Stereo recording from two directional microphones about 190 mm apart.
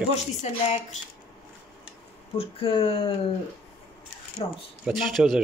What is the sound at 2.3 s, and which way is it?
Speech, 30° left (ahead or behind).